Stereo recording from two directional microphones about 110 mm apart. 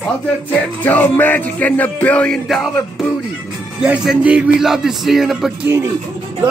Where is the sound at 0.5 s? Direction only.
15° left (ahead or behind).